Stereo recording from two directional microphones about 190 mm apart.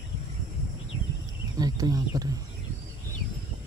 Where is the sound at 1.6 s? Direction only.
20° right (ahead or behind).